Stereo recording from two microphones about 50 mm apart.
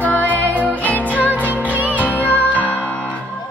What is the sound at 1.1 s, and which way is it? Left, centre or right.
Music, right.